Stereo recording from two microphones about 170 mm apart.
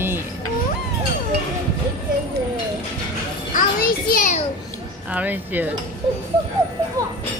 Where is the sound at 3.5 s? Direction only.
55° left (ahead or behind).